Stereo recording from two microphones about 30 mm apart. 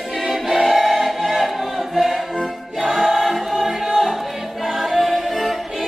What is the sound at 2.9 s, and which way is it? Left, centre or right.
Choir, centre.